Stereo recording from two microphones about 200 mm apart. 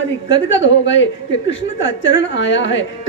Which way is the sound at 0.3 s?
65° left (ahead or behind).